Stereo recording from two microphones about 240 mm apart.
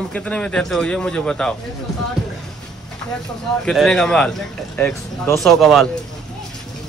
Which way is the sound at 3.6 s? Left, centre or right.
Centre.